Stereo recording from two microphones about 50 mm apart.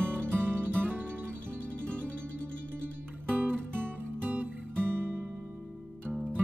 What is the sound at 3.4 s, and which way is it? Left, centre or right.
Music, right.